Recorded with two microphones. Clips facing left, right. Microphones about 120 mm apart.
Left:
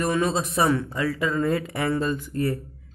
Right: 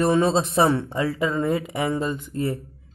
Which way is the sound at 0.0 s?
30° right (ahead or behind).